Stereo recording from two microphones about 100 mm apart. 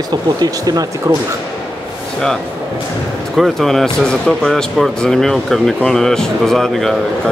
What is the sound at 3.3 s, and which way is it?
Speech, centre (ahead or behind).